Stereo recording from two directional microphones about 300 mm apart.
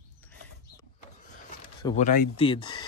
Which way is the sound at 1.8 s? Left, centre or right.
Centre.